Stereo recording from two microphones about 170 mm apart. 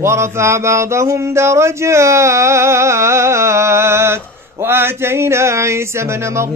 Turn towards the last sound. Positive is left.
turn(degrees=-15)  # may be behind; listen again after turning